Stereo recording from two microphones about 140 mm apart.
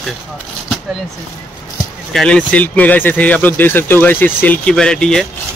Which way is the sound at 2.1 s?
5° left (ahead or behind).